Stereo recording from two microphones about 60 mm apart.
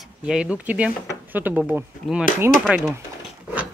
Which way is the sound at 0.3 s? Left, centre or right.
Centre.